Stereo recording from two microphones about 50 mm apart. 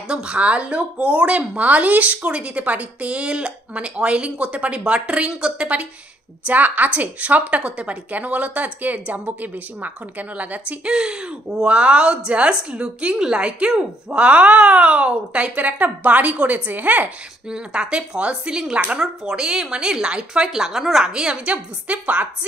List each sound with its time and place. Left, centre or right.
0.1 s speech: right
6.4 s a woman's voice: right
10.7 s speech: right
17.5 s a woman's voice: centre
20.5 s a woman's voice: centre; by 22.3 s right